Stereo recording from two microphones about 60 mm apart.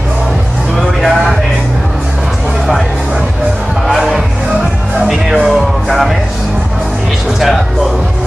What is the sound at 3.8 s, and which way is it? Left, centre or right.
Music, centre.